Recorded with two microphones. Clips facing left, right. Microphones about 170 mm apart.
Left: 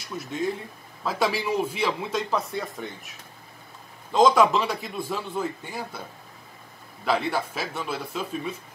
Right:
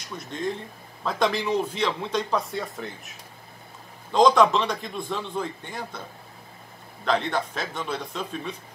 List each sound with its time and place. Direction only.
0.2 s a man's voice: 5° left (ahead or behind)
4.1 s a man's voice: 5° left (ahead or behind)
7.1 s speech: 10° left (ahead or behind)